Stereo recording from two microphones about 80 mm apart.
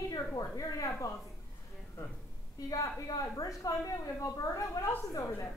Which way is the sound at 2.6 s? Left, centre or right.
Left.